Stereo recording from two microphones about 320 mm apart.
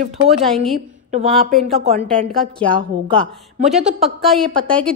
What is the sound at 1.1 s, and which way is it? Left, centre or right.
Speech, right.